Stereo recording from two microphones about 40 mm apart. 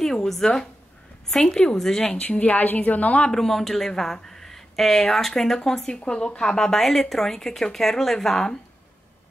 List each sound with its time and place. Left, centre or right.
0.0 s speech: centre
2.1 s a woman's voice: left
3.3 s speech: centre; by 6.4 s left
6.4 s speech: centre